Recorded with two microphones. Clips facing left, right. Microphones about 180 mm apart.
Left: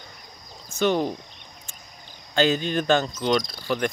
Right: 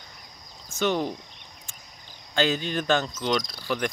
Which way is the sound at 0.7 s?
15° left (ahead or behind).